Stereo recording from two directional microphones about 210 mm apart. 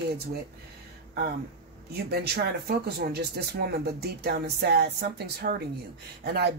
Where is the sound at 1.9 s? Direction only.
50° right (ahead or behind).